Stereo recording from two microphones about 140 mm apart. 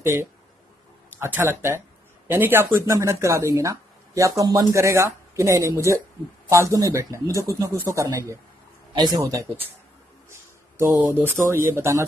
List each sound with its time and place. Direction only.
0.0 s speech: 20° right (ahead or behind)
10.3 s a sound: 20° right (ahead or behind)
11.7 s speech: 20° right (ahead or behind)